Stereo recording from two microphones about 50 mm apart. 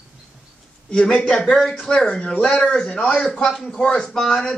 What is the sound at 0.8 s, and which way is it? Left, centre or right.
Speech, centre.